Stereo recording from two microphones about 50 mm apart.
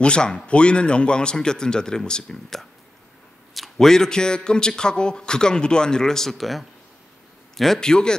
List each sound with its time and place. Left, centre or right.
0.0 s a man's voice: centre
3.5 s a man's voice: centre